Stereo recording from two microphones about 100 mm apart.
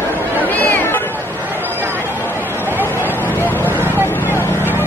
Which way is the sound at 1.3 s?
20° right (ahead or behind).